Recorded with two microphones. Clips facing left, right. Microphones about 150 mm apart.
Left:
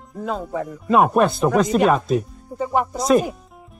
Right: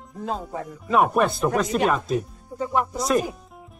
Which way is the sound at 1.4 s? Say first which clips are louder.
Left 5 dB; 90° left.